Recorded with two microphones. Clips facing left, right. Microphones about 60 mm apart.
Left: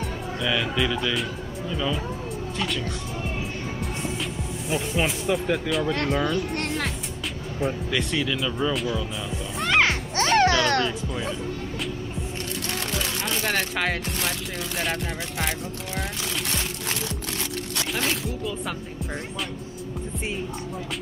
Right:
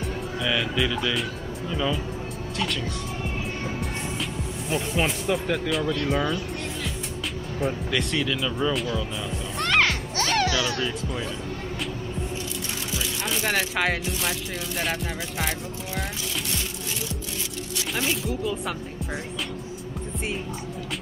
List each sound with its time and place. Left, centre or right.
0.0 s speech: centre
3.8 s music: centre
6.0 s speech: centre
6.3 s speech: left
7.6 s speech: centre
9.6 s music: centre
9.8 s music: left
10.8 s speech: centre
13.2 s speech: centre
15.3 s speech: centre
18.4 s speech: centre